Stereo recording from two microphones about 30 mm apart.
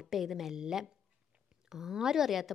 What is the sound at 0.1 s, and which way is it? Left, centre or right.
A woman's voice, centre.